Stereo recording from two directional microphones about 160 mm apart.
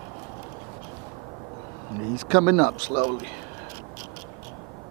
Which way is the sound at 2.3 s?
15° right (ahead or behind).